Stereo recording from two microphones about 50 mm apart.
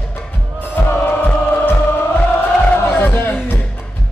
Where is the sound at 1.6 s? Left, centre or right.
Left.